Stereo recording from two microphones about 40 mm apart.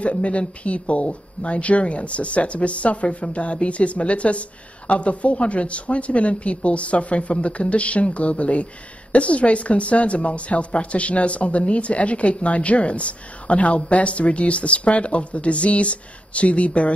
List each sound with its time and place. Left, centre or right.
0.0 s speech: left